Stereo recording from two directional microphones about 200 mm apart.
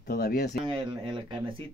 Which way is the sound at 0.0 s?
50° left (ahead or behind).